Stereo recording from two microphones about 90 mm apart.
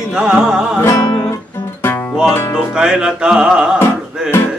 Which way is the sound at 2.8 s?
10° right (ahead or behind).